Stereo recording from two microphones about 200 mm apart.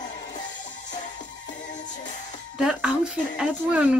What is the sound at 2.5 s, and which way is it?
A woman's voice, 5° right (ahead or behind).